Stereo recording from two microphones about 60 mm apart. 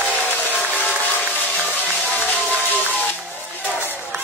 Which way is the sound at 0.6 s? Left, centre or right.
Left.